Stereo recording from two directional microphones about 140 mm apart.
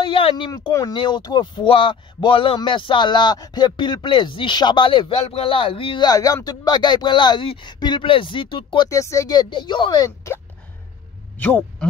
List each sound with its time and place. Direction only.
0.0 s speech: 40° left (ahead or behind)
8.8 s speech: 20° left (ahead or behind)
11.3 s a man's voice: 10° left (ahead or behind)